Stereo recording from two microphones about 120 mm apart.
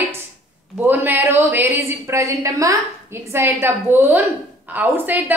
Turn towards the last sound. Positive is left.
turn(degrees=-15)  # may be behind; listen again after turning